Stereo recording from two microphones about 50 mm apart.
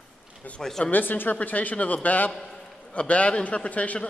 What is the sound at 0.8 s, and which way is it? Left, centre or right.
A man's voice, left.